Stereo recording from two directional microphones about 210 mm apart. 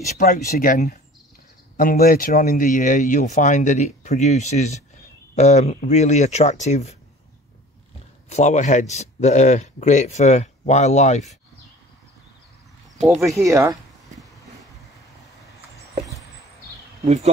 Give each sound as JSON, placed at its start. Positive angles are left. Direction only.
{"t": 0.2, "sound": "speech", "side_deg": 40}
{"t": 8.3, "sound": "speech", "side_deg": 35}
{"t": 13.5, "sound": "a sound", "side_deg": -15}
{"t": 17.0, "sound": "speech", "side_deg": -35}